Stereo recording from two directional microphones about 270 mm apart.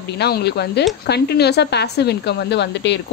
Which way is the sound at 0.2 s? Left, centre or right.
Left.